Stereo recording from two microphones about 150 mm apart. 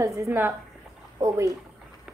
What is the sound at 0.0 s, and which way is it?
Speech, 20° right (ahead or behind).